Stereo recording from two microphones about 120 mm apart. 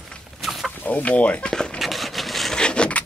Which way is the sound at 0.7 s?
10° left (ahead or behind).